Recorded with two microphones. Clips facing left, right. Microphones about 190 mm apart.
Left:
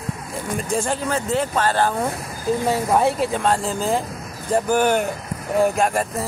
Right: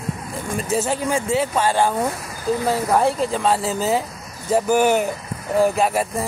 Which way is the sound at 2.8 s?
Centre (ahead or behind).